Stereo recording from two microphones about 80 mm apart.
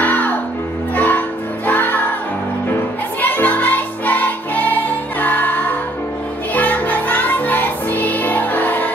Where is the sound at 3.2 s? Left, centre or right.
Left.